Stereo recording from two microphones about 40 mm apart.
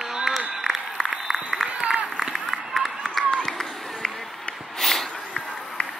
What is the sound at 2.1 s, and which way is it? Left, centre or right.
Run, centre.